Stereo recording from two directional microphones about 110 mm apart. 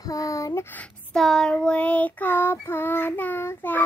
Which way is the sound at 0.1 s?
30° left (ahead or behind).